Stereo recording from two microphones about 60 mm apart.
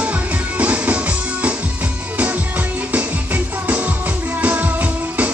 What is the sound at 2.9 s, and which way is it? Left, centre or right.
Music, right.